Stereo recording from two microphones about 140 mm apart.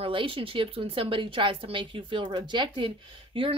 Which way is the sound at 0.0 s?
40° right (ahead or behind).